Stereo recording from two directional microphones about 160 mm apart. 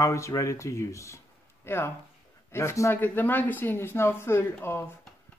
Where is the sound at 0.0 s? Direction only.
20° left (ahead or behind).